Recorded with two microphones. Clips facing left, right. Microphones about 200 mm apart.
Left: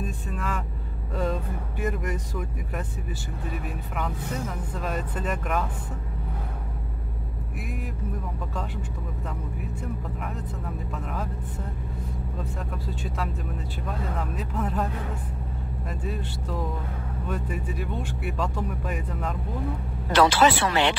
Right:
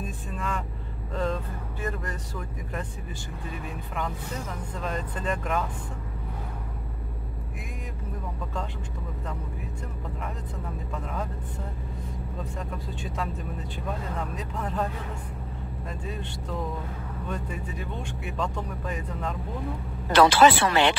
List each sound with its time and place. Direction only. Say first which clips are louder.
0.0 s speech: left 2 dB; centre (ahead or behind)
4.7 s speech: left 1 dB; 5° left (ahead or behind)
12.4 s speech: right 1 dB; centre (ahead or behind)
15.9 s speech: left 3 dB; 5° left (ahead or behind)
20.2 s speech: right 2 dB; 55° right (ahead or behind)